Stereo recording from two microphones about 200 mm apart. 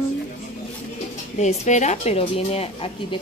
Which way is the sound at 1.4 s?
35° left (ahead or behind).